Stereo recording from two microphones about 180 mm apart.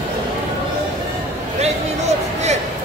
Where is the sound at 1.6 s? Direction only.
40° right (ahead or behind).